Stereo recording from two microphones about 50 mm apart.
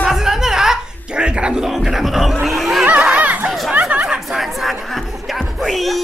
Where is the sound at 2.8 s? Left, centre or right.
Right.